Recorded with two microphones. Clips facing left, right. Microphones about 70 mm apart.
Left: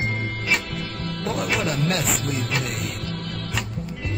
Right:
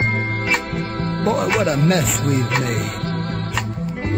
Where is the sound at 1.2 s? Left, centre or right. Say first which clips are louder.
Right 8 dB; right.